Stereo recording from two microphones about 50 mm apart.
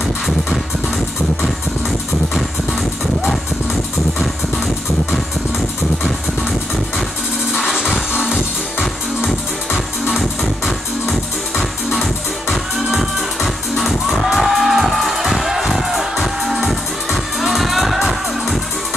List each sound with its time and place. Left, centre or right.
7.9 s music: centre
10.1 s music: centre